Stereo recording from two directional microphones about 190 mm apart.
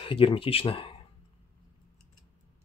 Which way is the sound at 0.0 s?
30° left (ahead or behind).